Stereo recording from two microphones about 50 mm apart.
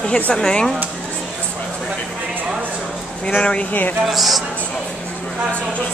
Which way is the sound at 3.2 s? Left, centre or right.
Centre.